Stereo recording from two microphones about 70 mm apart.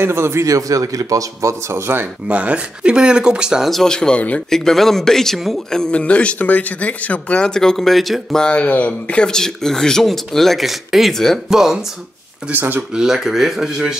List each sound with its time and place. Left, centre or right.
0.0 s a man's voice: right
1.7 s speech: right
2.2 s speech: centre
3.7 s speech: centre
7.4 s speech: centre
8.5 s speech: centre
12.4 s speech: right
12.9 s speech: centre